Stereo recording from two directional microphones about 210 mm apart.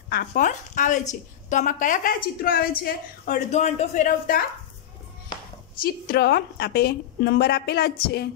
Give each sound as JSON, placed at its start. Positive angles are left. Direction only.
{"t": 0.1, "sound": "a woman's voice", "side_deg": 40}
{"t": 5.8, "sound": "a woman's voice", "side_deg": 45}